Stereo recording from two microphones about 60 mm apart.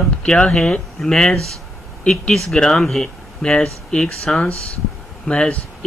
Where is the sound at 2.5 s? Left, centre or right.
Centre.